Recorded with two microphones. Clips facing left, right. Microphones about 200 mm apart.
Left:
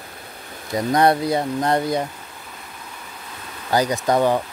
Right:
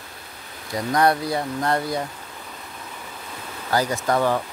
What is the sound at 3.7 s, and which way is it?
Speech, 15° left (ahead or behind).